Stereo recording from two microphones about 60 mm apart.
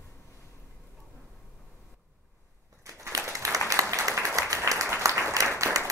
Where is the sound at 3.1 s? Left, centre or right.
Right.